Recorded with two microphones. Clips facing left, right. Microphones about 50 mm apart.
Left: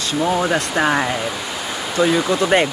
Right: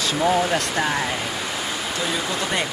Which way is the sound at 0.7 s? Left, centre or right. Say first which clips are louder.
Left 5 dB; left.